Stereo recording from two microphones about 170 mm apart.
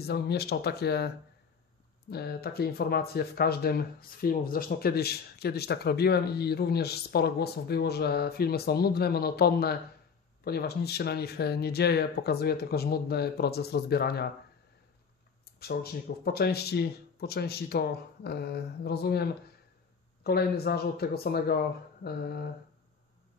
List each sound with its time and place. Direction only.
0.0 s speech: 70° left (ahead or behind)
15.6 s speech: 65° left (ahead or behind)
20.2 s speech: 65° left (ahead or behind)